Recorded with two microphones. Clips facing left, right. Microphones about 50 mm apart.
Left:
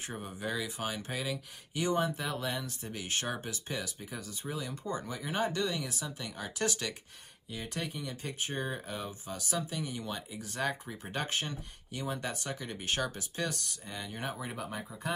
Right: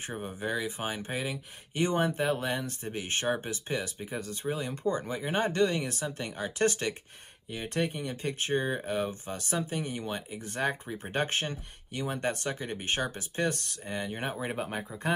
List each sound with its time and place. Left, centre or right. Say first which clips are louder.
0.0 s speech: right 3 dB; right